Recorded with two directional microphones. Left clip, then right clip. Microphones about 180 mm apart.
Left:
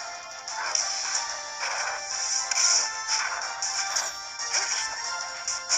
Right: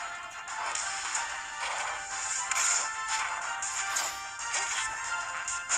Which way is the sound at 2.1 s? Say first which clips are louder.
Left 4 dB; 40° left (ahead or behind).